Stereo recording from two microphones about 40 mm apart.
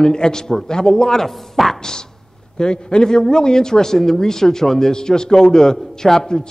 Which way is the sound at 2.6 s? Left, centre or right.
Left.